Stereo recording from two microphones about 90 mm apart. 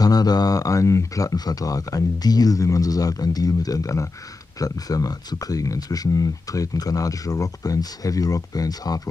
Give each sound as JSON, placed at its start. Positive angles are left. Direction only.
{"t": 0.0, "sound": "speech", "side_deg": 45}